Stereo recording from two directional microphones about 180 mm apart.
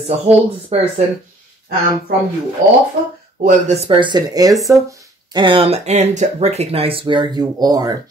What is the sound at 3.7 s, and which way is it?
Speech, 30° right (ahead or behind).